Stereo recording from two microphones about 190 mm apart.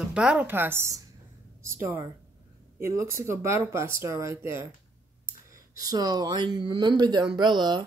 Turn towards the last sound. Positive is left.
turn(degrees=-25)  # may be behind; listen again after turning